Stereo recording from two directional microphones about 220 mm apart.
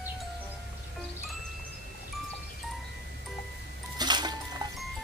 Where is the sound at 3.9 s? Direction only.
20° right (ahead or behind).